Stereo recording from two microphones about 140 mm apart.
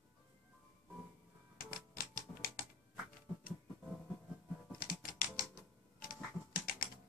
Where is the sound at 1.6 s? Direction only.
90° left.